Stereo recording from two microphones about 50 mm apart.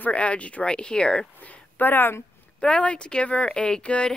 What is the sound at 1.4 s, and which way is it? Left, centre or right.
Speech, left.